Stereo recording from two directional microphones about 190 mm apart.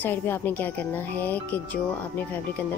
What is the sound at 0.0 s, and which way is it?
Speech, 10° left (ahead or behind).